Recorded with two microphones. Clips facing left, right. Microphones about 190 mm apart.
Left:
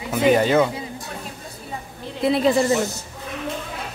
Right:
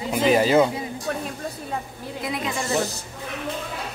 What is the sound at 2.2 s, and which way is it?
Speech, 30° left (ahead or behind).